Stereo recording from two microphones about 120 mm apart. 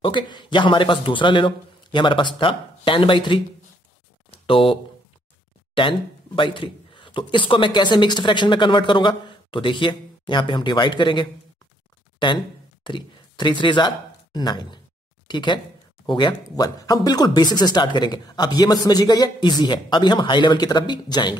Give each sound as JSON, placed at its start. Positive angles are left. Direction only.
{"t": 0.0, "sound": "speech", "side_deg": 40}
{"t": 4.3, "sound": "a sound", "side_deg": 50}
{"t": 5.8, "sound": "speech", "side_deg": 45}